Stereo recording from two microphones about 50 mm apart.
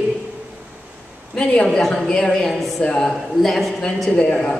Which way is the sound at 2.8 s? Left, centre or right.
Centre.